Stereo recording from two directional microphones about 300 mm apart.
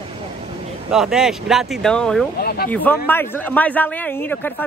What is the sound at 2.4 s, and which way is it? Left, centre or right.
Speech, left.